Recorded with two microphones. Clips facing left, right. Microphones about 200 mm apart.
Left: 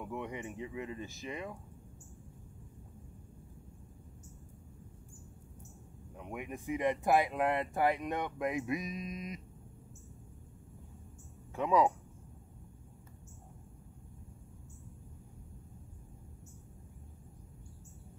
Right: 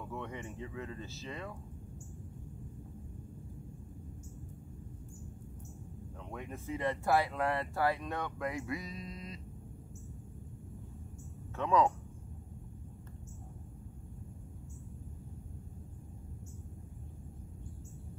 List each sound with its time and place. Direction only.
0.0 s speech: 15° left (ahead or behind)
6.2 s speech: 15° left (ahead or behind)
11.5 s speech: 10° left (ahead or behind)